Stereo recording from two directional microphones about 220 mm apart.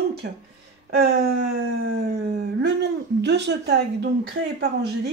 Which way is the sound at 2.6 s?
50° right (ahead or behind).